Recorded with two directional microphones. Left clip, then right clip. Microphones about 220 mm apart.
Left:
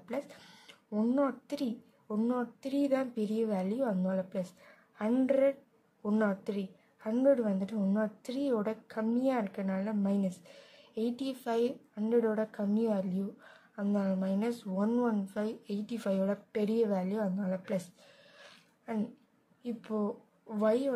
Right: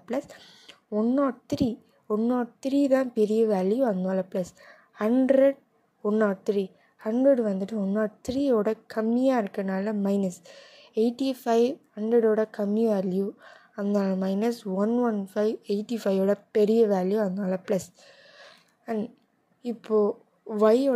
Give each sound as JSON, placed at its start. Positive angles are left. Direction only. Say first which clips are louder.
{"t": 0.0, "sound": "speech", "louder": "right 7 dB", "side_deg": -25}
{"t": 19.6, "sound": "a woman's voice", "louder": "right 12 dB", "side_deg": -25}